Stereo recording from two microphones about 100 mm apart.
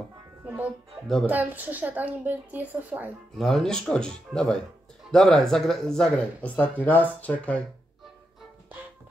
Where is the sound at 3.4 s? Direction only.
5° left (ahead or behind).